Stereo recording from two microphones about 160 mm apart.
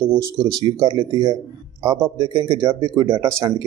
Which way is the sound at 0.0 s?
20° right (ahead or behind).